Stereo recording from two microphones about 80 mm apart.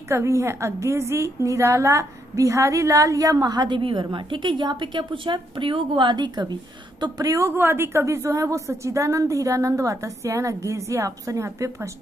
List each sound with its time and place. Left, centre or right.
0.1 s a woman's voice: right
7.0 s a woman's voice: right
7.5 s a woman's voice: right